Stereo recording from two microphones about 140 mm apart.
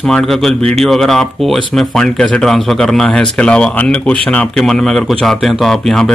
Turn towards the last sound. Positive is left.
turn(degrees=5)  # may be behind; listen again after turning